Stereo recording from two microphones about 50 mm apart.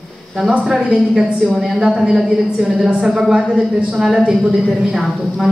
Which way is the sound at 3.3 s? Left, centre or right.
Centre.